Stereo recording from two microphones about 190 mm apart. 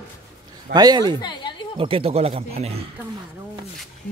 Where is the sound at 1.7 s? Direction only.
30° right (ahead or behind).